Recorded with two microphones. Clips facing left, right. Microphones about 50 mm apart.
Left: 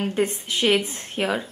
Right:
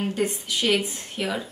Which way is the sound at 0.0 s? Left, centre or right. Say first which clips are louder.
Left 2 dB; left.